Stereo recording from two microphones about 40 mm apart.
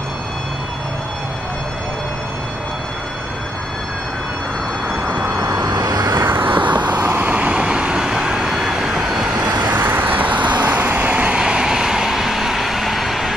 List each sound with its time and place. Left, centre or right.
4.8 s vehicle: right
6.1 s vehicle: right; by 9.2 s centre
9.8 s vehicle: right
11.3 s vehicle: right; by 13.3 s centre